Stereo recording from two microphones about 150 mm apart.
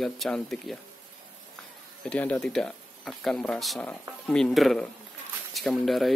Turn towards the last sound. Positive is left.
turn(degrees=0)  # may be behind; listen again after turning